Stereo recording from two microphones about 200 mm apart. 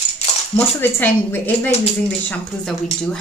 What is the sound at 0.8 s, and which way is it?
A woman's voice, 10° left (ahead or behind).